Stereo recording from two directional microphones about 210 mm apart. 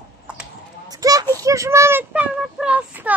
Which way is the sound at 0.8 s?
15° right (ahead or behind).